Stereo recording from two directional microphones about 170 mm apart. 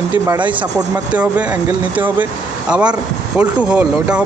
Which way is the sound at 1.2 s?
10° right (ahead or behind).